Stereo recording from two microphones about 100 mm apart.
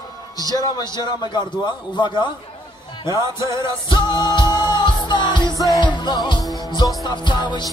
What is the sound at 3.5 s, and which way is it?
Music, 30° right (ahead or behind).